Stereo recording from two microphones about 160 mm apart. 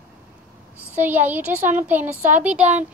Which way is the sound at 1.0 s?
10° right (ahead or behind).